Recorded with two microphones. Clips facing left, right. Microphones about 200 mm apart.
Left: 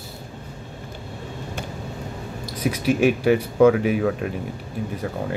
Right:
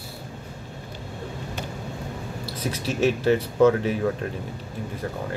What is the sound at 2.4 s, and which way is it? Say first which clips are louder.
Speech: left 8 dB; 10° left (ahead or behind).